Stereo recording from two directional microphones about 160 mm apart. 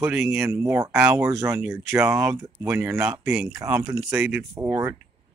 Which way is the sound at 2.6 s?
15° right (ahead or behind).